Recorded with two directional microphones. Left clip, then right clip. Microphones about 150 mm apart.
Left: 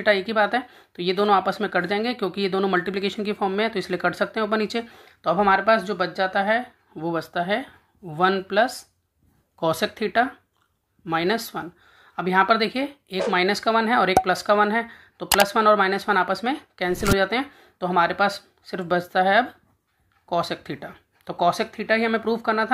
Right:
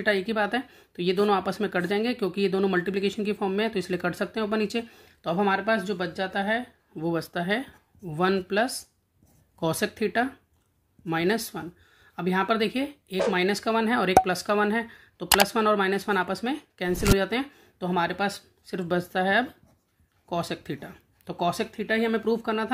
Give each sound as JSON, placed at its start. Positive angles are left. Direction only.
{"t": 0.0, "sound": "speech", "side_deg": -20}
{"t": 7.0, "sound": "speech", "side_deg": -30}
{"t": 16.9, "sound": "speech", "side_deg": 0}
{"t": 17.2, "sound": "speech", "side_deg": -25}